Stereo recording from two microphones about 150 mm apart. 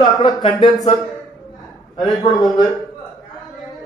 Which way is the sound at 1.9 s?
Centre (ahead or behind).